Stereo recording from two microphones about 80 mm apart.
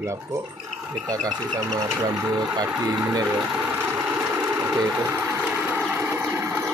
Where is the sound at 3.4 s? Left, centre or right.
Centre.